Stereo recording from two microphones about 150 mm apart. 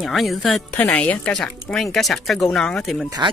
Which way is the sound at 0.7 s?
10° left (ahead or behind).